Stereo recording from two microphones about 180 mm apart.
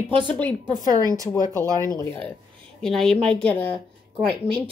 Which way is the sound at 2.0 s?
15° left (ahead or behind).